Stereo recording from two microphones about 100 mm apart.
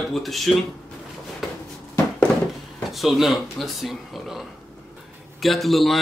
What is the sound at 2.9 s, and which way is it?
Speech, centre (ahead or behind).